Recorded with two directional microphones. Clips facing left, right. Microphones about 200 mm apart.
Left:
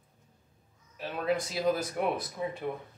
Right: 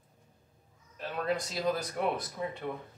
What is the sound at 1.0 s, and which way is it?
Speech, 5° left (ahead or behind).